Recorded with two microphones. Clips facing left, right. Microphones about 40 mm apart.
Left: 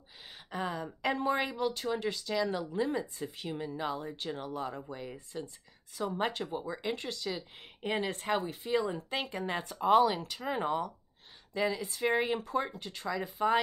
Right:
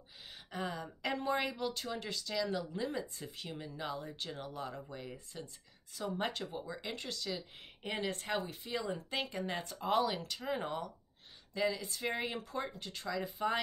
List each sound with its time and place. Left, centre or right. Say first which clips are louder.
0.5 s speech: left 4 dB; centre